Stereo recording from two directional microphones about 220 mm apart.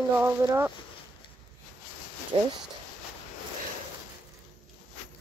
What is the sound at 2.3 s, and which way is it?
Speech, 25° right (ahead or behind).